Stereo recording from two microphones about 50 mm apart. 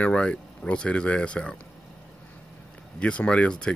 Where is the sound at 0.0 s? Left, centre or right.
Left.